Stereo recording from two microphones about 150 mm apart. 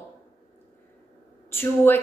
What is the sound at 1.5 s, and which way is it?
Speech, 15° left (ahead or behind).